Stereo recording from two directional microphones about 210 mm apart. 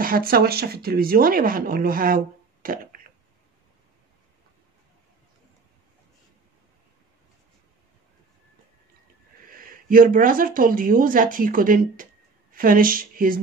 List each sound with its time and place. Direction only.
0.0 s speech: 45° right (ahead or behind)
9.5 s speech: 40° right (ahead or behind)